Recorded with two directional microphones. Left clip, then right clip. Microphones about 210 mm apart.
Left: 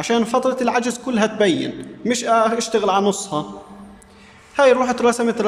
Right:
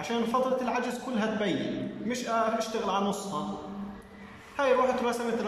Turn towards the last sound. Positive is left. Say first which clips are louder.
# left 9 dB
turn(degrees=50)  # may be behind; listen again after turning